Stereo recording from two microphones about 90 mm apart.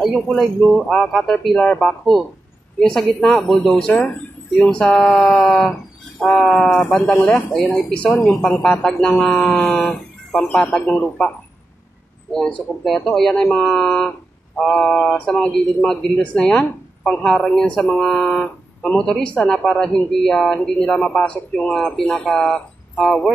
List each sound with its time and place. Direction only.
0.0 s speech: centre (ahead or behind)
4.0 s speech: 20° left (ahead or behind)
4.6 s speech: 5° left (ahead or behind)
9.3 s speech: centre (ahead or behind)